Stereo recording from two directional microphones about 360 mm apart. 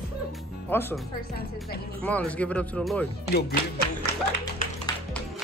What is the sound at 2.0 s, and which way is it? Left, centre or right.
Speech, centre.